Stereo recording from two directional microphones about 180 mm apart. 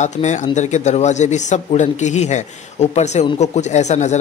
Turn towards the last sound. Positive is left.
turn(degrees=40)  # may be behind; listen again after turning